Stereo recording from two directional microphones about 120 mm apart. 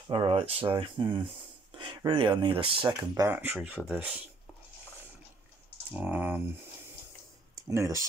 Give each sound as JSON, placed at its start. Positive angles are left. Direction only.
{"t": 0.1, "sound": "speech", "side_deg": -50}
{"t": 1.7, "sound": "a sound", "side_deg": -45}
{"t": 2.0, "sound": "speech", "side_deg": -40}
{"t": 3.0, "sound": "speech", "side_deg": -30}
{"t": 3.3, "sound": "speech", "side_deg": -15}
{"t": 5.9, "sound": "speech", "side_deg": -15}
{"t": 7.7, "sound": "speech", "side_deg": -25}